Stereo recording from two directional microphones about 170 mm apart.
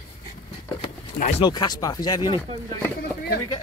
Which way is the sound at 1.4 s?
25° left (ahead or behind).